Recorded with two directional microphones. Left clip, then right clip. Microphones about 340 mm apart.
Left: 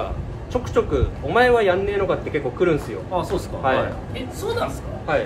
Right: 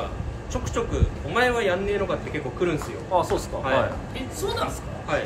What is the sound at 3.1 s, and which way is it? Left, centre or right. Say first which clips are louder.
Speech: right 2 dB; centre.